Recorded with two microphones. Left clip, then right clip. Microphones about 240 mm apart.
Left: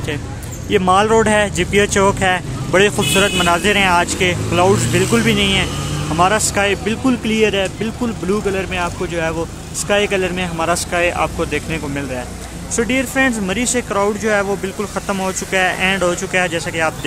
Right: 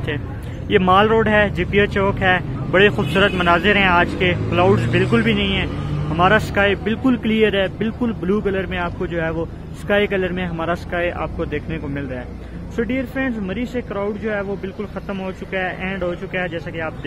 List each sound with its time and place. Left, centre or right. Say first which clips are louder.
0.7 s speech: left 1 dB; centre